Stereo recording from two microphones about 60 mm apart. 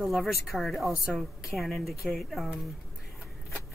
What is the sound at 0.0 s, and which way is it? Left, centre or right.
Speech, centre.